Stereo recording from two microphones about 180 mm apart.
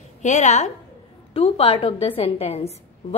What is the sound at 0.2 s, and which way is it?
A woman's voice, 40° left (ahead or behind).